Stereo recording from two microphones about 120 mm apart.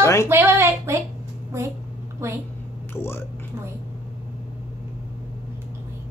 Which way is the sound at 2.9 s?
20° left (ahead or behind).